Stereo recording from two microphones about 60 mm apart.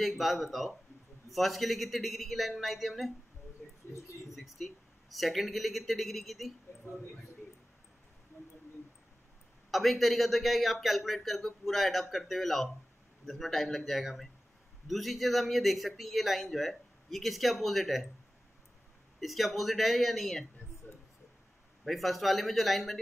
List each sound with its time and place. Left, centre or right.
0.0 s speech: centre
5.1 s speech: centre
9.7 s speech: centre
19.1 s speech: centre
20.8 s a sound: left
21.8 s speech: centre